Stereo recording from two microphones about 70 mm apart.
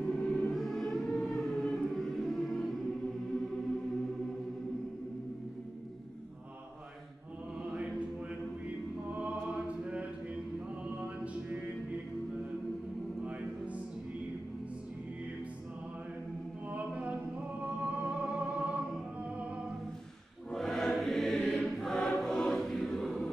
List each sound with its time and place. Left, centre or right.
0.0 s music: centre
9.1 s music: centre
16.6 s music: right
20.5 s choir: centre